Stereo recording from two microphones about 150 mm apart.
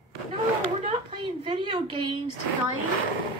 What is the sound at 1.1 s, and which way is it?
A woman's voice, 35° right (ahead or behind).